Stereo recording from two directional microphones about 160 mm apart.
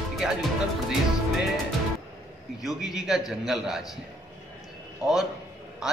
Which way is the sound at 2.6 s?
Centre (ahead or behind).